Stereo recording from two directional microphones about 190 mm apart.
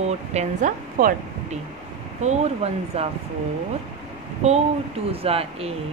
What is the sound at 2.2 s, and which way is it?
Speech, 35° right (ahead or behind).